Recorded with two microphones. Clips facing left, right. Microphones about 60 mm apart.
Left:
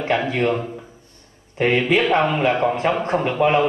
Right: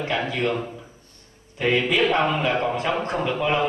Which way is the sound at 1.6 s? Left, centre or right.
Left.